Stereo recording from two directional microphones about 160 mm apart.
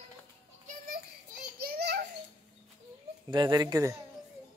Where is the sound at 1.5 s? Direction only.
75° right (ahead or behind).